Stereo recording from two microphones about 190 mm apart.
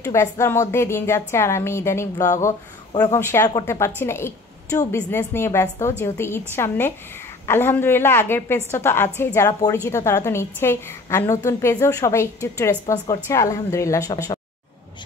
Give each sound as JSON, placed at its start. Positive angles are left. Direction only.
{"t": 0.0, "sound": "a woman's voice", "side_deg": 15}